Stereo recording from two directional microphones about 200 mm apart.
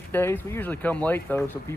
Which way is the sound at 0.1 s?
10° left (ahead or behind).